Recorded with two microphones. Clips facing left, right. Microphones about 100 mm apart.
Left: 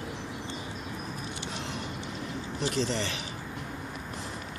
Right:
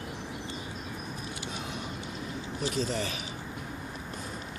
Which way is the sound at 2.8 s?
75° left (ahead or behind).